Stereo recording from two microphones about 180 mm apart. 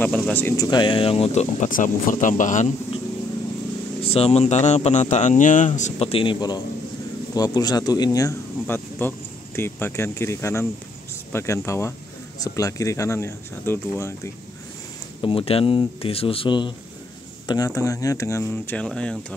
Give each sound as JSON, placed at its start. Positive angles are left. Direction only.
{"t": 0.0, "sound": "speech", "side_deg": 10}
{"t": 0.7, "sound": "speech", "side_deg": 25}
{"t": 4.0, "sound": "speech", "side_deg": 35}
{"t": 15.2, "sound": "speech", "side_deg": 30}